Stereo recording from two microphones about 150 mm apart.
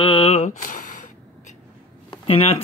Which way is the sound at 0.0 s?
40° left (ahead or behind).